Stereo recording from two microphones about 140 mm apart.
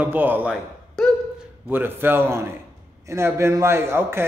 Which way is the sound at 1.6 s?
15° right (ahead or behind).